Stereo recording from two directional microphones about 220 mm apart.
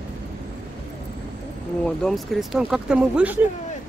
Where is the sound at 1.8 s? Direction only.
Centre (ahead or behind).